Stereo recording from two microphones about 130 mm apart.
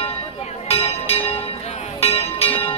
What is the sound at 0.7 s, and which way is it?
Music, 50° left (ahead or behind).